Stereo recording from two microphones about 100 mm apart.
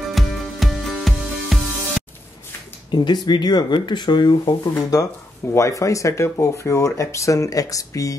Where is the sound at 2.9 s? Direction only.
50° left (ahead or behind).